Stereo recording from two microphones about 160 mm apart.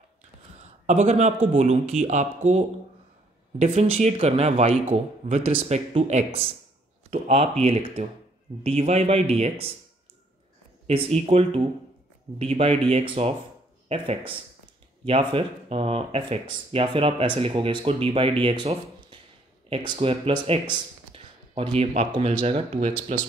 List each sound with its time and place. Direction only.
0.6 s a man's voice: 45° right (ahead or behind)
10.9 s speech: 40° right (ahead or behind)